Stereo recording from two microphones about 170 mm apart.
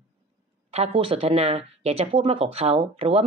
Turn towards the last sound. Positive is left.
turn(degrees=-35)  # may be behind; listen again after turning